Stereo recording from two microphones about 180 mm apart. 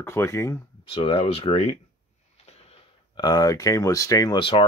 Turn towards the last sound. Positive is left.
turn(degrees=30)  # may be behind; listen again after turning